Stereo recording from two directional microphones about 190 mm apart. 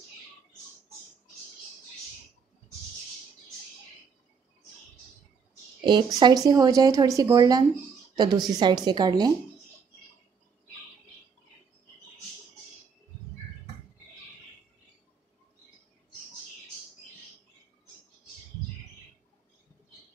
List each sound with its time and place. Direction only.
5.9 s speech: 25° right (ahead or behind)